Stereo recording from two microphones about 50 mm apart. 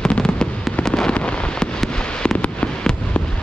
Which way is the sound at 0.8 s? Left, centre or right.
Centre.